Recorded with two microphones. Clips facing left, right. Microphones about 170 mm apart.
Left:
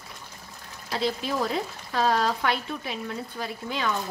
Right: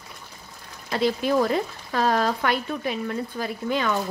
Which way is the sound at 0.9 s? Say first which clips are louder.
Right 6 dB; 55° right (ahead or behind).